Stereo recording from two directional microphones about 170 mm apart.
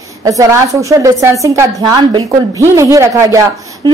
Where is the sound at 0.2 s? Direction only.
20° right (ahead or behind).